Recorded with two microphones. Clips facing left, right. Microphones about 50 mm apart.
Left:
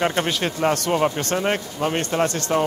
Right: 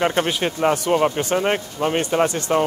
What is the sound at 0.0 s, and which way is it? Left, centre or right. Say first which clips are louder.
Speech: right 2 dB; centre.